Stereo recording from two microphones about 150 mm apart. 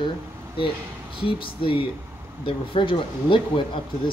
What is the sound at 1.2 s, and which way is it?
Speech, 35° left (ahead or behind).